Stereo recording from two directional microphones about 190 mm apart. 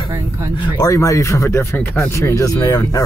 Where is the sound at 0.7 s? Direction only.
15° left (ahead or behind).